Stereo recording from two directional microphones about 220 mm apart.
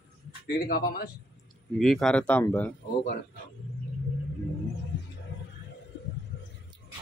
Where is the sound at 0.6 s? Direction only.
40° left (ahead or behind).